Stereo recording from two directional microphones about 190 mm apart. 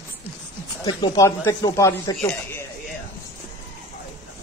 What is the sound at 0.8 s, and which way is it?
A man's voice, 20° left (ahead or behind).